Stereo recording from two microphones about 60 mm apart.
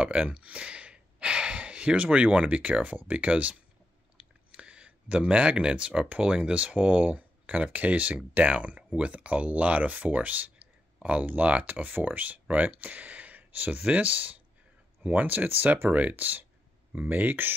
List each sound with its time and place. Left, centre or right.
0.0 s speech: right